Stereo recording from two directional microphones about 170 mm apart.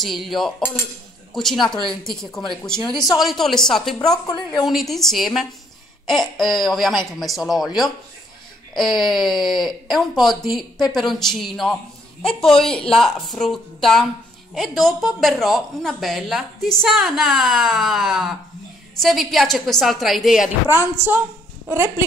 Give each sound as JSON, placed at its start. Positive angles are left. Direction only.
{"t": 0.0, "sound": "speech", "side_deg": 0}
{"t": 0.6, "sound": "cutlery", "side_deg": 15}
{"t": 1.3, "sound": "speech", "side_deg": 0}
{"t": 2.8, "sound": "speech", "side_deg": 25}
{"t": 3.2, "sound": "speech", "side_deg": 0}
{"t": 21.6, "sound": "speech", "side_deg": -15}